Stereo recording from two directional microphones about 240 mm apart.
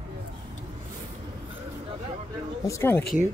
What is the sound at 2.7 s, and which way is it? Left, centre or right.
Speech, centre.